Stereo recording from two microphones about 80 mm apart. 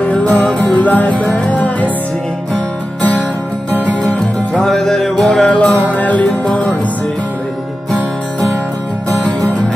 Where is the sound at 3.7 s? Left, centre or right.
Centre.